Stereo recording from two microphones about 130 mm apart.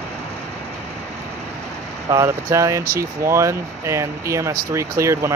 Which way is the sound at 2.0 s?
25° right (ahead or behind).